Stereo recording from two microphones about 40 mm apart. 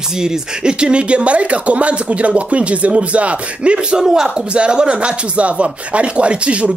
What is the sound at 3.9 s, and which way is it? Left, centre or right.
Speech, centre.